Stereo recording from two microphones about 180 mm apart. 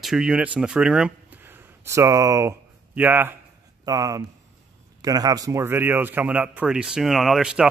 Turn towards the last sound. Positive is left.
turn(degrees=-5)  # may be behind; listen again after turning